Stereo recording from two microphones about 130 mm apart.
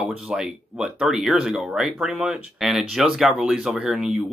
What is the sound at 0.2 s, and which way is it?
Speech, 5° right (ahead or behind).